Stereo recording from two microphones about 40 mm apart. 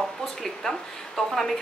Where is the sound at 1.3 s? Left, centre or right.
Centre.